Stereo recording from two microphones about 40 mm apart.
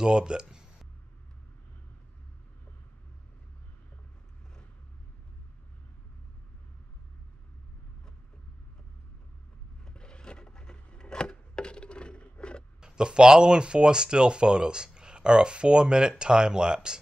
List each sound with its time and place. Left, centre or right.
0.0 s a sound: right
9.8 s chopping: left
12.8 s speech: right